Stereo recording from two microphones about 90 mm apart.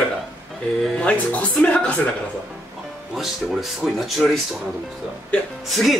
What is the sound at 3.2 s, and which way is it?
Speech, centre (ahead or behind).